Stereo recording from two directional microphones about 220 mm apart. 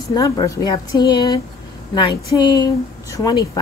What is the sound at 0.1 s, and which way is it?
A woman's voice, 15° left (ahead or behind).